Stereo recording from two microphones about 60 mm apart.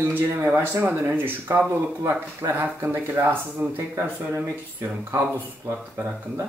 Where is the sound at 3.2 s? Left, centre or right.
Right.